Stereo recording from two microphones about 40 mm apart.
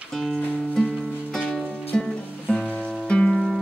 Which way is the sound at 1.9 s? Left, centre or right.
Centre.